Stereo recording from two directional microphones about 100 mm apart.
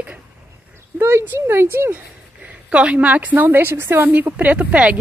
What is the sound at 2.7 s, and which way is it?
A woman's voice, 10° right (ahead or behind).